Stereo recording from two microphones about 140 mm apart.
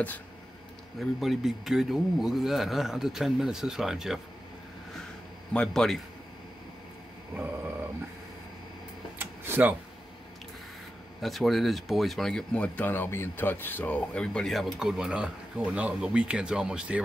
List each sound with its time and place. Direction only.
0.9 s speech: centre (ahead or behind)
5.5 s speech: 5° left (ahead or behind)
9.2 s a sound: 15° right (ahead or behind)
11.1 s speech: centre (ahead or behind)